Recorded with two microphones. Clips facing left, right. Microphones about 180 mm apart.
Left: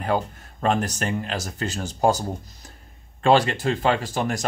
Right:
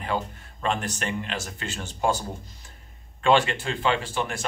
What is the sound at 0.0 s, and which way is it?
Speech, 45° left (ahead or behind).